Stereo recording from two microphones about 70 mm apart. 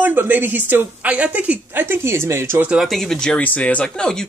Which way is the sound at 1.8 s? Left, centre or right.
Right.